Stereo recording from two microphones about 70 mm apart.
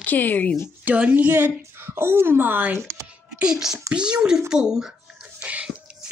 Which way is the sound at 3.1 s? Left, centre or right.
Centre.